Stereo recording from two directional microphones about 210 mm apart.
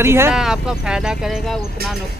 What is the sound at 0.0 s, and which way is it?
Speech, 10° right (ahead or behind).